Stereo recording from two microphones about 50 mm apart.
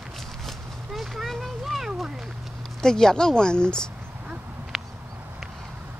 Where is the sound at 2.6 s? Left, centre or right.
Centre.